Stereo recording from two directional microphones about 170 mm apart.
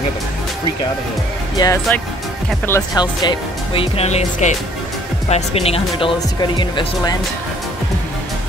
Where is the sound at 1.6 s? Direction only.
25° left (ahead or behind).